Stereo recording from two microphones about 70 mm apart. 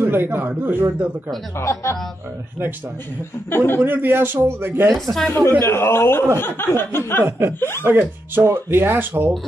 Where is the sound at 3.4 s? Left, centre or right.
Left.